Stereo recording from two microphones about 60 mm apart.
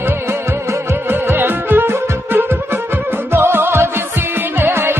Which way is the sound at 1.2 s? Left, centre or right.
Right.